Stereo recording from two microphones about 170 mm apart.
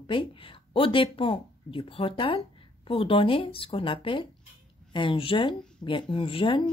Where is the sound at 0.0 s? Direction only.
30° left (ahead or behind).